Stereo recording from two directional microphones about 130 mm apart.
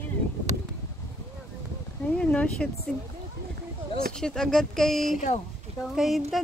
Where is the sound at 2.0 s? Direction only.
10° left (ahead or behind).